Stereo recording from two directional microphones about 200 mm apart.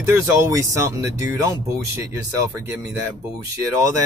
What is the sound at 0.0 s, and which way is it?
Speech, 15° right (ahead or behind).